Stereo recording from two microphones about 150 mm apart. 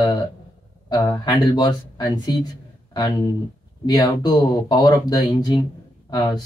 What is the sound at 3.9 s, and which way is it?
Speech, 25° left (ahead or behind).